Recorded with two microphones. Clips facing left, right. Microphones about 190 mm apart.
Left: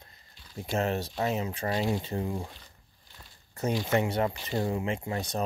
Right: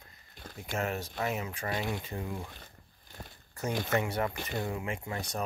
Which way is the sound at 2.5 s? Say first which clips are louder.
Right 2 dB; 50° right (ahead or behind).